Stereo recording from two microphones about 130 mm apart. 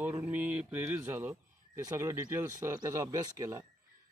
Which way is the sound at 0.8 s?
20° right (ahead or behind).